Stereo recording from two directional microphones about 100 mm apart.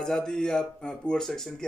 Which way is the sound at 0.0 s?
5° left (ahead or behind).